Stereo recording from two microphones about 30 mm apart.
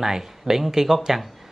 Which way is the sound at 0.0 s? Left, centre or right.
Centre.